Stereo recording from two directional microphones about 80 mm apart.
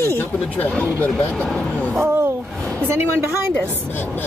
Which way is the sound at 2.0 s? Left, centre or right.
Right.